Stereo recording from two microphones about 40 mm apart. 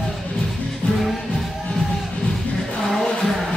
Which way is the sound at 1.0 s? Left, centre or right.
Centre.